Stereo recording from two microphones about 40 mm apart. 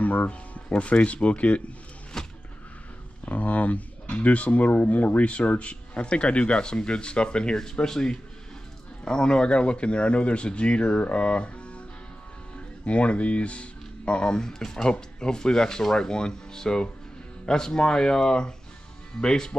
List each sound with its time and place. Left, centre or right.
0.0 s speech: left
0.7 s speech: left
2.1 s a sound: centre
3.3 s speech: left
12.8 s speech: left